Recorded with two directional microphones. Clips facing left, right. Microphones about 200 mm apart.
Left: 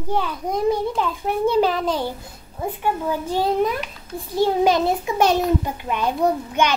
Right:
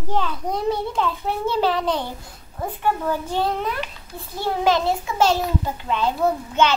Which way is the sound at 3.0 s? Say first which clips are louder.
Left 1 dB; 15° left (ahead or behind).